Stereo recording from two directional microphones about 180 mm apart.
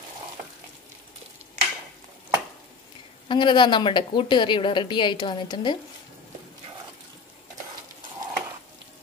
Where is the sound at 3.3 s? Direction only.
25° left (ahead or behind).